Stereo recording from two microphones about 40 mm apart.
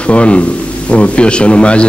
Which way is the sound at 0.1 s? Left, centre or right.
Left.